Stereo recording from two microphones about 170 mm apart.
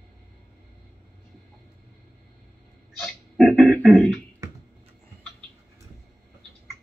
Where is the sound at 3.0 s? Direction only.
Centre (ahead or behind).